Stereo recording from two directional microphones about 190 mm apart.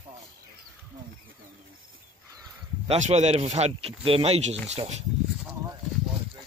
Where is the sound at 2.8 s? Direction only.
30° right (ahead or behind).